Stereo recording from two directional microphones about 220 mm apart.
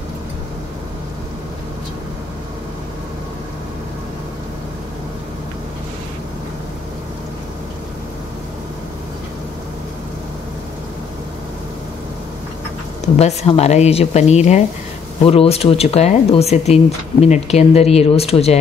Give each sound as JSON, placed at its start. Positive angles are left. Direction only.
{"t": 13.0, "sound": "speech", "side_deg": 30}